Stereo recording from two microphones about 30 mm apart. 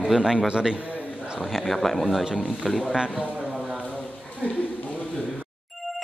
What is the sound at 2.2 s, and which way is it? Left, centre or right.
Speech, centre.